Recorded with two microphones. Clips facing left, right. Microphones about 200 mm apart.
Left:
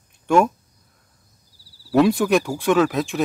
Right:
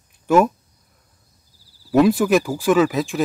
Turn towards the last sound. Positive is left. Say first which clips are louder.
# right 1 dB
turn(degrees=0)  # may be behind; listen again after turning